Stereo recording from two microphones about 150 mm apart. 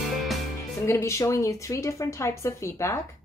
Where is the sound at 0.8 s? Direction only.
20° left (ahead or behind).